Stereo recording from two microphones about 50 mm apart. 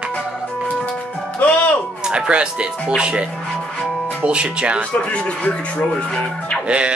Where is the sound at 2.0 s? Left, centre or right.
Centre.